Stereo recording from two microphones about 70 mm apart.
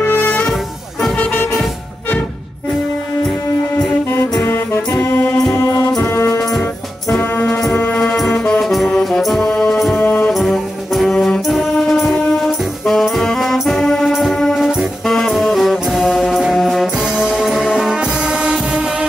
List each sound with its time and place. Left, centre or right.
0.0 s music: left
1.1 s vehicle: left
5.0 s music: left
5.6 s music: left
7.7 s music: left
8.3 s music: centre
9.9 s music: left
10.3 s brass instrument: centre